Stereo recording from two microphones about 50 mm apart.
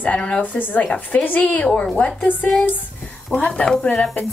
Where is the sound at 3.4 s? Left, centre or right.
Left.